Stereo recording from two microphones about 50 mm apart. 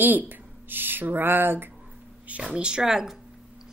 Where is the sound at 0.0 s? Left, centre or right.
Right.